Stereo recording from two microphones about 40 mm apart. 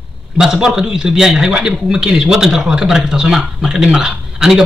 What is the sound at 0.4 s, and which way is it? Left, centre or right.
Speech, centre.